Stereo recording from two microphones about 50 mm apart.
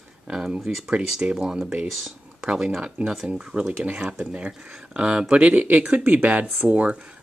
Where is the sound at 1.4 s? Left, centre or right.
Centre.